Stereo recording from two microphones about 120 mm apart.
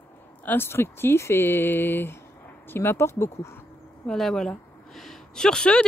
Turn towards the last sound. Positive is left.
turn(degrees=5)  # may be behind; listen again after turning